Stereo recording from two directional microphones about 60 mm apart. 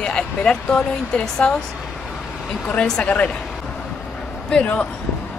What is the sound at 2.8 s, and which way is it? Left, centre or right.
Speech, centre.